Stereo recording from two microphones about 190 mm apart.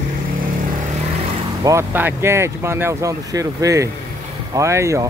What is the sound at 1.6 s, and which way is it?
Speech, 15° right (ahead or behind).